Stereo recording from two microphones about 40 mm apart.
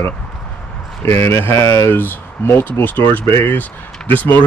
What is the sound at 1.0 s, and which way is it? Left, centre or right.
Speech, left.